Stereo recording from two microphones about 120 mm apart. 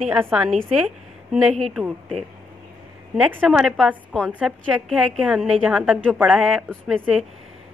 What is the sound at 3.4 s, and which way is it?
Speech, centre (ahead or behind).